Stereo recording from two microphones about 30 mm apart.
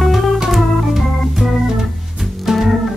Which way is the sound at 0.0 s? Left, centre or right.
Centre.